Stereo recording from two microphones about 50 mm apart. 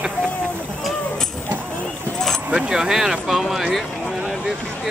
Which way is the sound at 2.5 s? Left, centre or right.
Centre.